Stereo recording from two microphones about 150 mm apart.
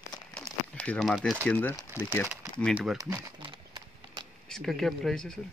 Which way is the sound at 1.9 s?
10° right (ahead or behind).